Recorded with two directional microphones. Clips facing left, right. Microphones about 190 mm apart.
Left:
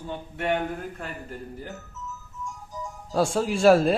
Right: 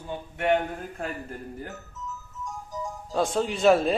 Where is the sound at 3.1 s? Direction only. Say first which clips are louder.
Left 2 dB; 5° left (ahead or behind).